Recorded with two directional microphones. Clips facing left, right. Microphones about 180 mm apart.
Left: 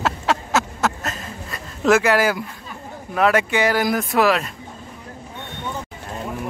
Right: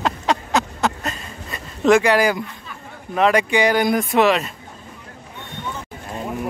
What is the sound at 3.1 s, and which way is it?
Speech, 5° left (ahead or behind).